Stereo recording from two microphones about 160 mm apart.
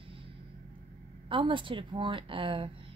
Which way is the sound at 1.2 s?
30° right (ahead or behind).